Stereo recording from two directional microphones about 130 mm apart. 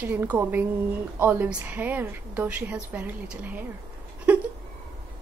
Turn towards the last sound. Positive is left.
turn(degrees=-10)  # may be behind; listen again after turning